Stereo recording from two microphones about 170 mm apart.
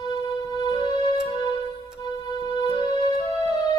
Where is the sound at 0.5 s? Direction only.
25° left (ahead or behind).